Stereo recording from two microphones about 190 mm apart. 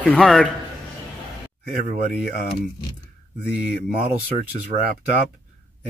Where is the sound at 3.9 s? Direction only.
50° right (ahead or behind).